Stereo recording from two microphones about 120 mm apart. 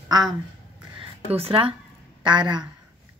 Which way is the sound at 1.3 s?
55° right (ahead or behind).